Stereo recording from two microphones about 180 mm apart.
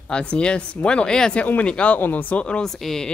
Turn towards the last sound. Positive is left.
turn(degrees=0)  # may be behind; listen again after turning